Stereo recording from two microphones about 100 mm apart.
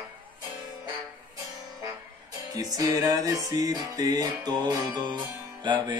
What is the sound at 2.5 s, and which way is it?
Music, 35° right (ahead or behind).